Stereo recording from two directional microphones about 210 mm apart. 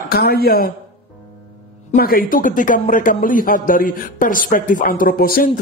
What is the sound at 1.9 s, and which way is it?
Speech, 45° left (ahead or behind).